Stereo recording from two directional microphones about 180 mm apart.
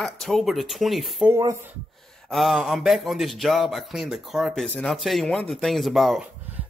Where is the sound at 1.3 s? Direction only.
15° right (ahead or behind).